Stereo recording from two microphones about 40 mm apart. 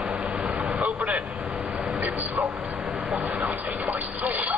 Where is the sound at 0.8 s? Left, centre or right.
Right.